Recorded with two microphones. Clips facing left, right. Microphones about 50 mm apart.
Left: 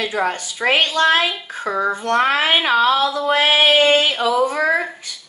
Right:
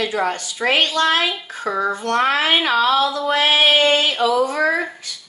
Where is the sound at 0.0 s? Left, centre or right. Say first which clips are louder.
Even; centre.